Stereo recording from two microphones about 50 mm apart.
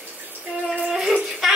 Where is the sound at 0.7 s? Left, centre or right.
Centre.